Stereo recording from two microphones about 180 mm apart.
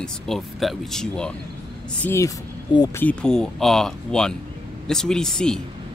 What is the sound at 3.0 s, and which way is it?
Speech, 5° left (ahead or behind).